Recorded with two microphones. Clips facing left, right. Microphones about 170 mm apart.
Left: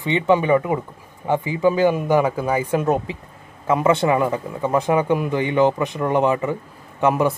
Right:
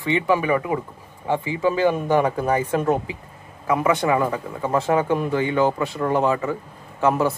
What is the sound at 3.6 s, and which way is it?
Speech, 25° left (ahead or behind).